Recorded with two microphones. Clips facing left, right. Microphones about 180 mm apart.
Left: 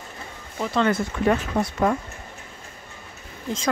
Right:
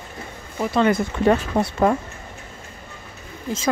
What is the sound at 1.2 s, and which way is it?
Speech, 30° right (ahead or behind).